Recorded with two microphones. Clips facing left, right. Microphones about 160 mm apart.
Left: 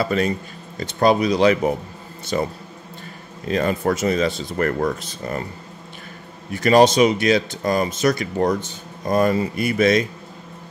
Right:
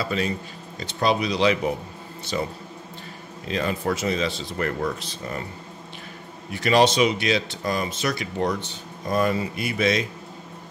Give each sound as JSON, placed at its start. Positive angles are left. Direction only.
{"t": 0.0, "sound": "speech", "side_deg": 50}
{"t": 6.5, "sound": "speech", "side_deg": 45}